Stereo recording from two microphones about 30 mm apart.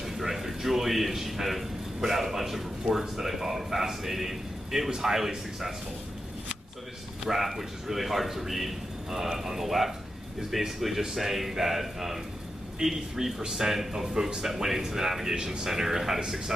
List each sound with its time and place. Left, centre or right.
0.0 s a man's voice: centre
7.2 s a man's voice: centre
15.3 s a man's voice: right
15.6 s a man's voice: centre